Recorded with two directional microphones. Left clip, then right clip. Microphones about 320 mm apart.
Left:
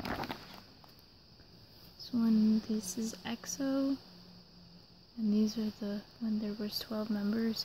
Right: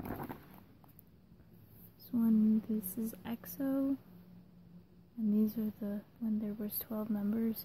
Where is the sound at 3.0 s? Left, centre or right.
Centre.